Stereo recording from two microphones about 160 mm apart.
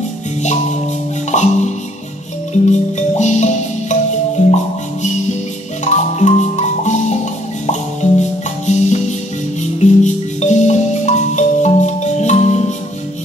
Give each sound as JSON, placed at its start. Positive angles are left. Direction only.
{"t": 0.4, "sound": "music", "side_deg": 45}
{"t": 2.7, "sound": "music", "side_deg": 45}
{"t": 5.9, "sound": "music", "side_deg": 45}